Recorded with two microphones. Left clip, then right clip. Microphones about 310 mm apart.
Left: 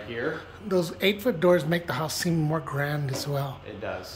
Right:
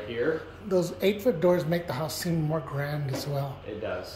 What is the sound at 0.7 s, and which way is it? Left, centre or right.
Speech, centre.